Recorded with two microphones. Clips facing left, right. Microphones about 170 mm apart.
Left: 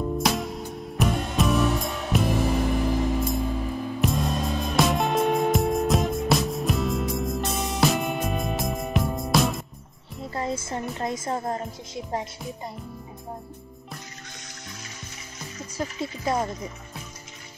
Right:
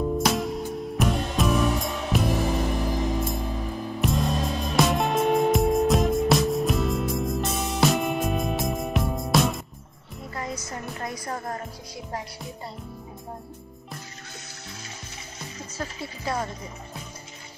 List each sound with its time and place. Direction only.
0.2 s music: centre (ahead or behind)
10.3 s music: 25° left (ahead or behind)
15.8 s music: 20° left (ahead or behind)